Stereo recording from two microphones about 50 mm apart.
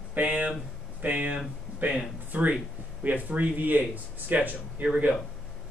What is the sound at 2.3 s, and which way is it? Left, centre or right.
Speech, right.